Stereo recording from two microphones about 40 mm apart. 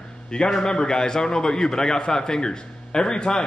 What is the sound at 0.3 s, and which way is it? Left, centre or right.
A man's voice, left.